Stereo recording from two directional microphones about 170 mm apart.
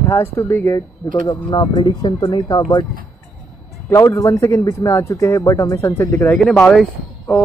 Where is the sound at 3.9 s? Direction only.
20° left (ahead or behind).